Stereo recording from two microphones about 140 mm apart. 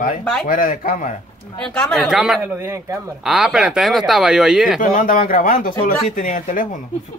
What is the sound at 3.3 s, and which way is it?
Speech, 5° right (ahead or behind).